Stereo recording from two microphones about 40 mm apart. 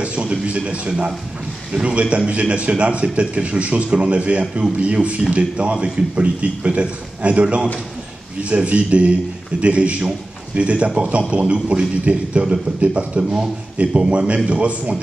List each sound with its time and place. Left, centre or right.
0.0 s a man's voice: right
13.2 s a man's voice: centre
14.0 s a man's voice: right